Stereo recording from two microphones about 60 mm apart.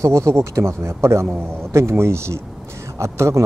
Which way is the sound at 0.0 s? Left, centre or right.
Right.